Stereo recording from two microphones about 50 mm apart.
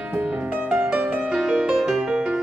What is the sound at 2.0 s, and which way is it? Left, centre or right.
Music, right.